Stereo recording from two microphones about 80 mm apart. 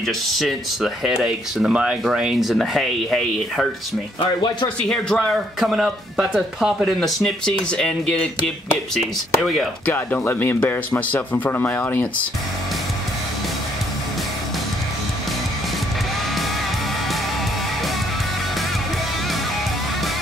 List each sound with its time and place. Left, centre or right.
0.0 s speech: centre
4.8 s speech: centre
5.6 s speech: centre
9.8 s speech: left